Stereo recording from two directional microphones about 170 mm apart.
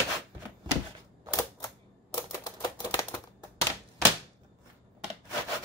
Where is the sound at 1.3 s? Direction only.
20° left (ahead or behind).